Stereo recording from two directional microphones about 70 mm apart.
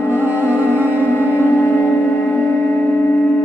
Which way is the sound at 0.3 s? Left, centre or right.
Right.